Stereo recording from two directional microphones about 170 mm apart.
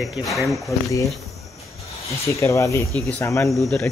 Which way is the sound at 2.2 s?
15° left (ahead or behind).